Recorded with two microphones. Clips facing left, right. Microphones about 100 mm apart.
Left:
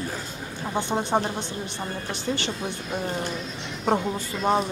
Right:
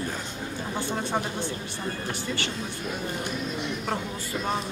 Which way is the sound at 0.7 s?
20° left (ahead or behind).